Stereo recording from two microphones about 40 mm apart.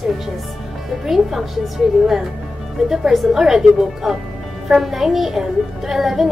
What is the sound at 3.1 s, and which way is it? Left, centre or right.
A woman's voice, centre.